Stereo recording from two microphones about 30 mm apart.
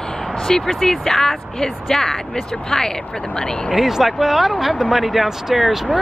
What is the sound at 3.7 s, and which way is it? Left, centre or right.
Speech, centre.